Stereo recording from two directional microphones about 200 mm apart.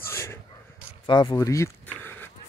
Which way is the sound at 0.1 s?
15° left (ahead or behind).